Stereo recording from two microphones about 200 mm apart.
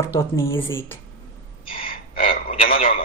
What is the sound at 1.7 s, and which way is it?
Gasp, 45° left (ahead or behind).